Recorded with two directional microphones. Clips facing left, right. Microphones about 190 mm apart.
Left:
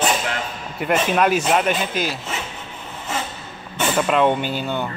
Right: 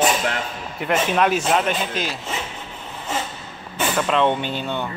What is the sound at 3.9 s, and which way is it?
Speech, 5° left (ahead or behind).